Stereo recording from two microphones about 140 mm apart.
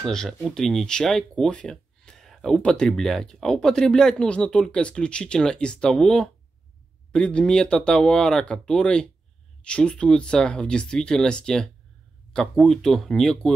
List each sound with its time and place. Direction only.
0.0 s speech: 5° left (ahead or behind)